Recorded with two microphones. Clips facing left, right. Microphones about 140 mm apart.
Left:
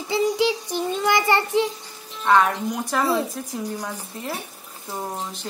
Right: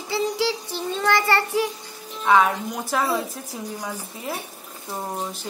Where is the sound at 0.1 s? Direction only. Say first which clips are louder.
Left 3 dB; 15° left (ahead or behind).